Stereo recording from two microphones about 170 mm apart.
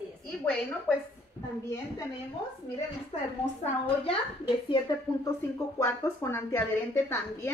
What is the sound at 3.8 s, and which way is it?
A woman's voice, 35° left (ahead or behind).